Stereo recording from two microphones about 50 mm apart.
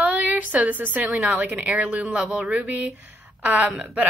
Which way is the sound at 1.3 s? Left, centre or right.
Right.